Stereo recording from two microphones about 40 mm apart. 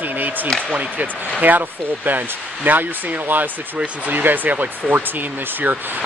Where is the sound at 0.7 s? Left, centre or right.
Right.